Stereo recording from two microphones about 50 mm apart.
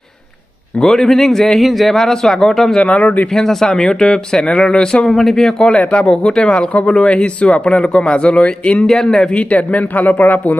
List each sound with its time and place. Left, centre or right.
0.8 s speech: centre
2.0 s speech: centre
2.8 s speech: left
3.3 s speech: centre
5.1 s speech: centre; by 8.8 s left
8.8 s speech: centre
9.4 s speech: left